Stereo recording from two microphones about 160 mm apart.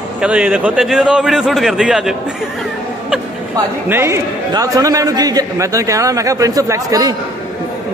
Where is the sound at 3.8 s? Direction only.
15° right (ahead or behind).